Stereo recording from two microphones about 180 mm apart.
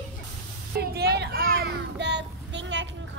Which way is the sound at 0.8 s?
65° right (ahead or behind).